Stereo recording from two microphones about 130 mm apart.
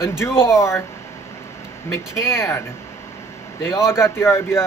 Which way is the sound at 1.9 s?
20° left (ahead or behind).